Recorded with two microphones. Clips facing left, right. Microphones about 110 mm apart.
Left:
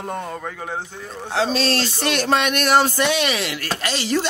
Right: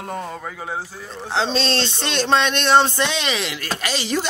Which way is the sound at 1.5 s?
25° right (ahead or behind).